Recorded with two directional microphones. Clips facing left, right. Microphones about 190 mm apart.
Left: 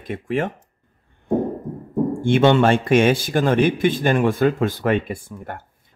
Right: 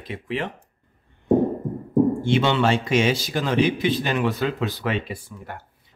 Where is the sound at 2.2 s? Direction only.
50° left (ahead or behind).